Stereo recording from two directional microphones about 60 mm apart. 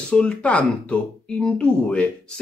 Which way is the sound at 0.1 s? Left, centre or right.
Centre.